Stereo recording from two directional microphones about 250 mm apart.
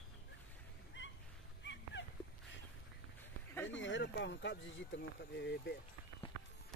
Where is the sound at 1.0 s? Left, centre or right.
Left.